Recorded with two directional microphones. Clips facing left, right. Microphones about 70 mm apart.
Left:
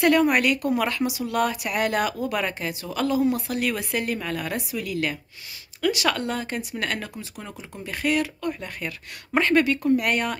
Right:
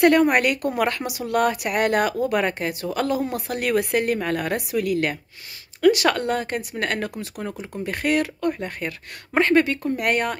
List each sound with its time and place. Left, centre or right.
0.0 s speech: right
8.5 s speech: right